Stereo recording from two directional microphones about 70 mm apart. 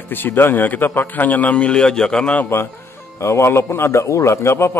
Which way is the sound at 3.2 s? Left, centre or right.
Left.